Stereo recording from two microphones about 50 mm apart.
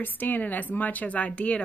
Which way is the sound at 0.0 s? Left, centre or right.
Left.